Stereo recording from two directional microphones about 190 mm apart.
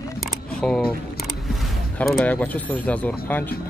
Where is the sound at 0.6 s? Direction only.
5° left (ahead or behind).